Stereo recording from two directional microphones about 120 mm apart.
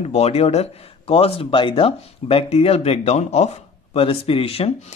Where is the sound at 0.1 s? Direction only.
60° left (ahead or behind).